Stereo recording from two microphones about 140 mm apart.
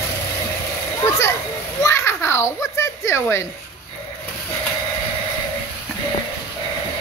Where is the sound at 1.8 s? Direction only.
20° left (ahead or behind).